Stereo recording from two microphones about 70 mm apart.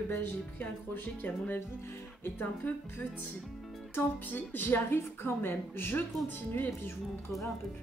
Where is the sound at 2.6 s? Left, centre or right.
Left.